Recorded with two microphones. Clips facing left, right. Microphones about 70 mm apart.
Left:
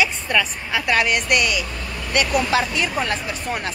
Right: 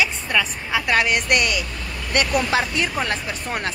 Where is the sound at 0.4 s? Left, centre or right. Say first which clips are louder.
Right 1 dB; centre.